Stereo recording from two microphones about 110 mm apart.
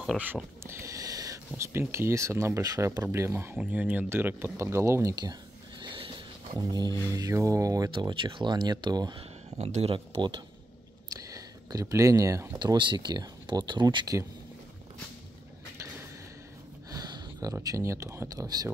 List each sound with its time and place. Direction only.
0.7 s a sound: 25° right (ahead or behind)
1.7 s speech: 25° right (ahead or behind)
7.9 s speech: 45° right (ahead or behind)
9.6 s speech: 80° right
9.9 s speech: 50° right (ahead or behind)
11.1 s a sound: 35° right (ahead or behind)
12.5 s speech: 45° right (ahead or behind)
16.9 s a sound: 35° right (ahead or behind)
17.6 s speech: 30° right (ahead or behind)